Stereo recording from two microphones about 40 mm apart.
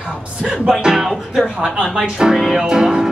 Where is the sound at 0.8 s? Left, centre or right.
Centre.